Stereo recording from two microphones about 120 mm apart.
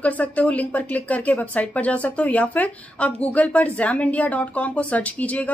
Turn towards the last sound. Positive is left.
turn(degrees=10)  # may be behind; listen again after turning